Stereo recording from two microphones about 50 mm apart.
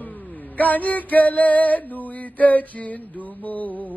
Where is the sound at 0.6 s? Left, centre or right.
Left.